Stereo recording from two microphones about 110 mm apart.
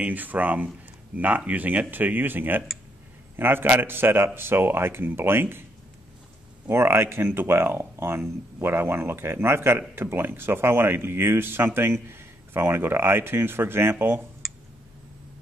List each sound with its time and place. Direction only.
0.0 s speech: 15° right (ahead or behind)
6.7 s speech: 20° right (ahead or behind)